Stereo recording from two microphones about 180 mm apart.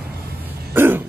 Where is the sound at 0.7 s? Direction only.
10° right (ahead or behind).